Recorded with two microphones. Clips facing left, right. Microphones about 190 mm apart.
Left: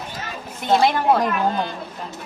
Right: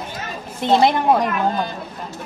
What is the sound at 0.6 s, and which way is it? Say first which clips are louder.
Speech: right 2 dB; 20° right (ahead or behind).